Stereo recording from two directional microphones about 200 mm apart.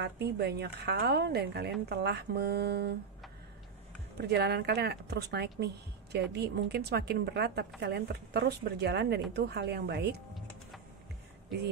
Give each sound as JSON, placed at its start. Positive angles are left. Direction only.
{"t": 0.0, "sound": "speech", "side_deg": -55}
{"t": 4.2, "sound": "speech", "side_deg": -55}
{"t": 10.3, "sound": "music", "side_deg": 0}